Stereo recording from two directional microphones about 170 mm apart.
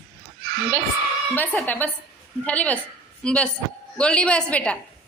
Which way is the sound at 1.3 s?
10° left (ahead or behind).